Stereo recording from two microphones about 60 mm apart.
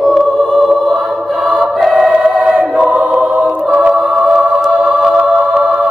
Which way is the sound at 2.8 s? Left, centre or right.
Right.